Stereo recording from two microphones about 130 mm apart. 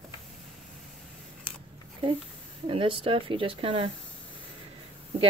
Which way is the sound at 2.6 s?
45° right (ahead or behind).